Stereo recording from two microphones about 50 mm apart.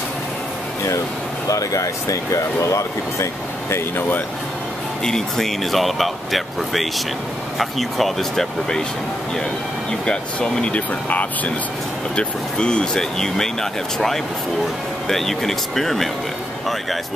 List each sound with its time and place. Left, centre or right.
5.0 s speech: centre
10.0 s speech: centre
12.2 s speech: centre